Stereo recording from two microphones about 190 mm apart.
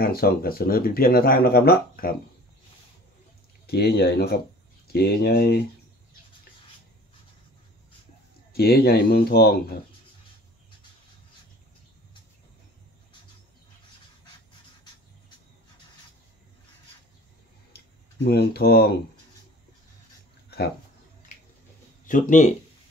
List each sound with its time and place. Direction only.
0.0 s speech: 50° left (ahead or behind)
3.6 s speech: 55° left (ahead or behind)
8.5 s speech: 55° left (ahead or behind)
17.7 s tick-tock: 55° left (ahead or behind)
20.4 s a sound: 55° left (ahead or behind)
22.0 s speech: 45° left (ahead or behind)